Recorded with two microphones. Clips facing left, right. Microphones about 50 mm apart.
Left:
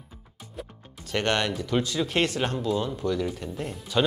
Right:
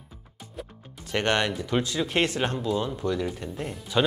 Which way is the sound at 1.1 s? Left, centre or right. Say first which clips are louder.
Right 1 dB; centre.